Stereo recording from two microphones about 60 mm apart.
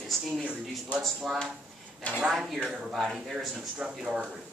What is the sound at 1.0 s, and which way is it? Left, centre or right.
Speech, centre.